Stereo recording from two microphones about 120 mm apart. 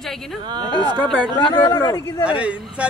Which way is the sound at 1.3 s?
40° left (ahead or behind).